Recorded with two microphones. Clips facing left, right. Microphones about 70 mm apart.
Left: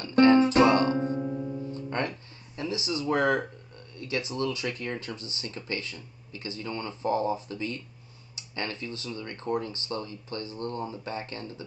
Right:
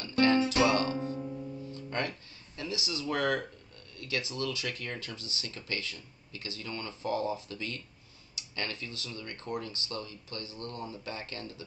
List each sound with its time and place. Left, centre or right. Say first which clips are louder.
0.1 s music: left 7 dB; left
1.2 s music: left 7 dB; left
1.7 s speech: left 1 dB; left